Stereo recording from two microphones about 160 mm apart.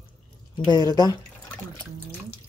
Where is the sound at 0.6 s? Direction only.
25° left (ahead or behind).